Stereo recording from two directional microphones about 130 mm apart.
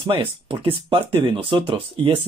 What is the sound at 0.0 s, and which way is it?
Speech, 45° right (ahead or behind).